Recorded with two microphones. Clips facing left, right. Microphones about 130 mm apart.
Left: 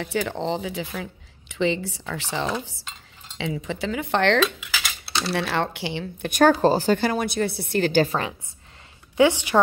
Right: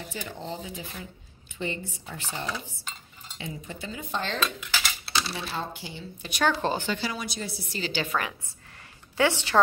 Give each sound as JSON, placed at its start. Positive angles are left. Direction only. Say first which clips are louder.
{"t": 0.0, "sound": "speech", "louder": "left 11 dB", "side_deg": 75}
{"t": 4.6, "sound": "cutlery", "louder": "even", "side_deg": 0}
{"t": 5.2, "sound": "speech", "louder": "left 9 dB", "side_deg": 70}
{"t": 6.3, "sound": "a woman's voice", "louder": "left 9 dB", "side_deg": 40}
{"t": 7.0, "sound": "a woman's voice", "louder": "left 10 dB", "side_deg": 55}
{"t": 8.1, "sound": "a woman's voice", "louder": "left 3 dB", "side_deg": 25}